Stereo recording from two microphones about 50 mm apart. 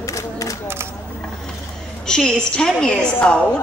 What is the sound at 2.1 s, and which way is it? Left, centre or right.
A woman's voice, centre.